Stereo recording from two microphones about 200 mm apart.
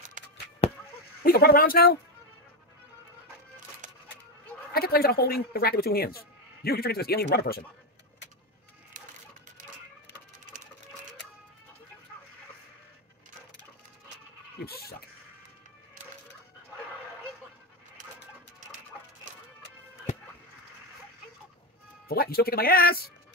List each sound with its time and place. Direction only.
1.2 s speech: 50° left (ahead or behind)
3.8 s a sound: 40° right (ahead or behind)
4.7 s speech: 50° left (ahead or behind)
14.6 s speech: 50° left (ahead or behind)
22.0 s speech: 50° left (ahead or behind)